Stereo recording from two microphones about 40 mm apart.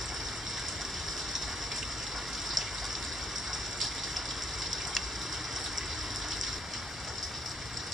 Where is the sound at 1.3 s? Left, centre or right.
Centre.